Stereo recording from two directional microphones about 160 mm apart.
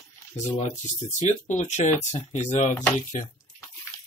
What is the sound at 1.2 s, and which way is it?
Speech, 45° left (ahead or behind).